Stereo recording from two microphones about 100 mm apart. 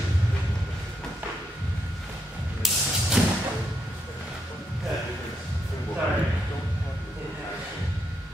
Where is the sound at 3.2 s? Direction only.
5° right (ahead or behind).